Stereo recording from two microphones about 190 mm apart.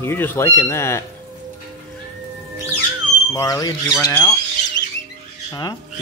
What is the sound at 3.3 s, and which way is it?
Speech, 15° left (ahead or behind).